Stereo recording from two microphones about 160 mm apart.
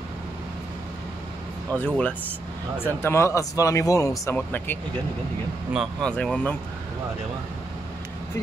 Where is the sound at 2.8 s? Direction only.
15° left (ahead or behind).